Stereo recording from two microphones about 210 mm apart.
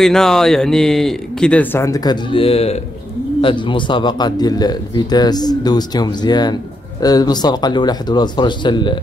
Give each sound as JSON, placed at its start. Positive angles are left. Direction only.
{"t": 0.0, "sound": "speech", "side_deg": 0}